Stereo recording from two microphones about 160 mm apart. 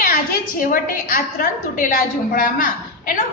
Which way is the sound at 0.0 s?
55° left (ahead or behind).